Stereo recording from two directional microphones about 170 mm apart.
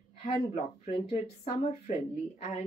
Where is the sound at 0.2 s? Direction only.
40° left (ahead or behind).